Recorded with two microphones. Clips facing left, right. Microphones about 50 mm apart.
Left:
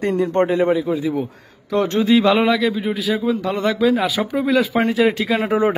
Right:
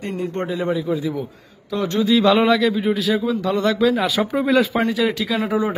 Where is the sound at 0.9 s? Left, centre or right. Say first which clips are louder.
Left 3 dB; left.